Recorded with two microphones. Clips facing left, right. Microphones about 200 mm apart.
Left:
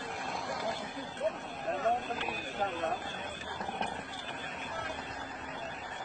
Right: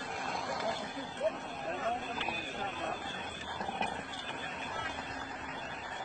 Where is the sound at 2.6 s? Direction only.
45° left (ahead or behind).